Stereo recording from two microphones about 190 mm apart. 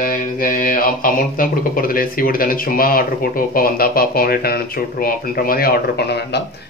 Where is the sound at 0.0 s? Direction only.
45° left (ahead or behind).